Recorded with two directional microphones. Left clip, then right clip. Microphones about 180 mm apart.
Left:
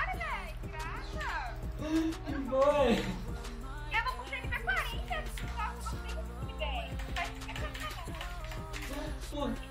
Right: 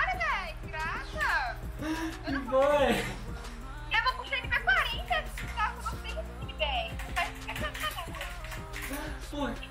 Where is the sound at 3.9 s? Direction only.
20° right (ahead or behind).